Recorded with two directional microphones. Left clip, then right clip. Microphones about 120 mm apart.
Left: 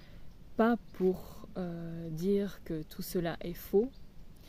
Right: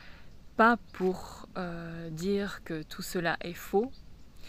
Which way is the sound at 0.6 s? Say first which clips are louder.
Right 6 dB; 30° left (ahead or behind).